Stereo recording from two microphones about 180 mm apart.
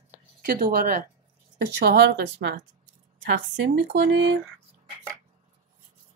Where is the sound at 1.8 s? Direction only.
70° right (ahead or behind).